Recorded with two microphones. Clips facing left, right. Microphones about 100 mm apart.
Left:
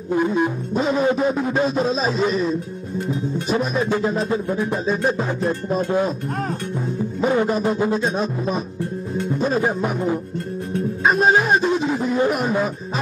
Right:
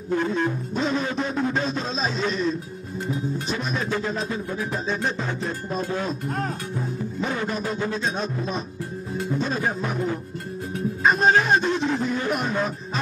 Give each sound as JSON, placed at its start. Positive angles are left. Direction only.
{"t": 0.1, "sound": "speech", "side_deg": 15}
{"t": 1.7, "sound": "music", "side_deg": 5}
{"t": 4.6, "sound": "music", "side_deg": 5}
{"t": 7.4, "sound": "a man's voice", "side_deg": 35}
{"t": 9.1, "sound": "music", "side_deg": -5}
{"t": 10.7, "sound": "music", "side_deg": 0}
{"t": 12.3, "sound": "speech", "side_deg": 5}